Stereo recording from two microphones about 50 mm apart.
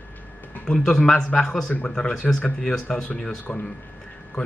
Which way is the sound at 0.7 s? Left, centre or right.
Centre.